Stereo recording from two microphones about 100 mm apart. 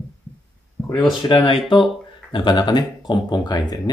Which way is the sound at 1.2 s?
60° left (ahead or behind).